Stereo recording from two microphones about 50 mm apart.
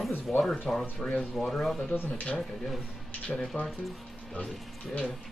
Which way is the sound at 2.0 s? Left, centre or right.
Left.